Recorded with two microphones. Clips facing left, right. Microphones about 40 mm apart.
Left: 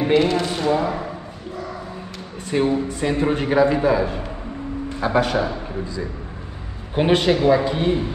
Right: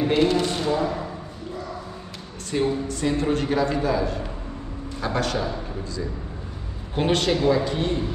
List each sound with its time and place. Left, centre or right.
0.1 s speech: centre
0.7 s a man's voice: left
2.5 s a man's voice: centre
7.0 s a man's voice: centre